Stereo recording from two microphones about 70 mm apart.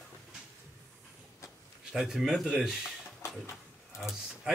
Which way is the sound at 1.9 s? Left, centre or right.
Centre.